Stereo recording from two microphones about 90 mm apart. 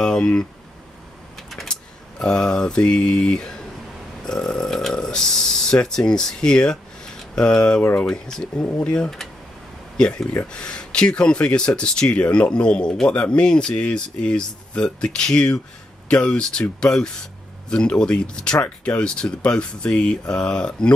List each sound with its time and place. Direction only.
0.0 s speech: 10° left (ahead or behind)
2.1 s speech: 5° left (ahead or behind)
8.1 s speech: 5° left (ahead or behind)